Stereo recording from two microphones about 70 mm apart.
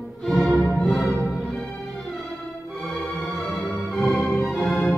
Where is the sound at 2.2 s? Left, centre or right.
Centre.